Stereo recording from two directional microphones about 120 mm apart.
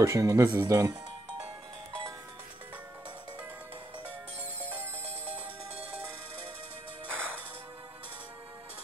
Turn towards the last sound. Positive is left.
turn(degrees=10)  # may be behind; listen again after turning